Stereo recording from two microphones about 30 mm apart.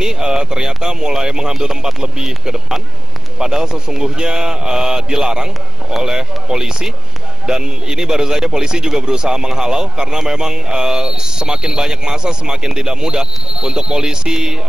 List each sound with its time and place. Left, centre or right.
0.0 s speech: right